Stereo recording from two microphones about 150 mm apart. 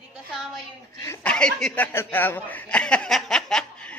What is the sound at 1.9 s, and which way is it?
Speech, 15° left (ahead or behind).